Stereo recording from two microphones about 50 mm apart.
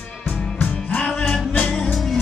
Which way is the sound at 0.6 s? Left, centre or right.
Left.